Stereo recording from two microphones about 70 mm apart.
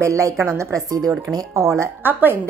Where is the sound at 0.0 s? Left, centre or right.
Right.